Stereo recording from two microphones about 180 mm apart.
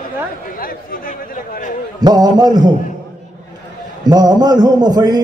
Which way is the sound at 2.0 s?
20° right (ahead or behind).